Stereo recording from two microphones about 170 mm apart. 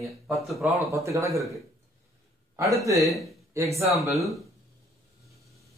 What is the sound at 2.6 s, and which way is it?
Speech, 20° right (ahead or behind).